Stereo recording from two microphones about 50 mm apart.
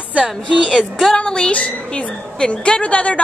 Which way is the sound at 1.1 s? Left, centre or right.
Centre.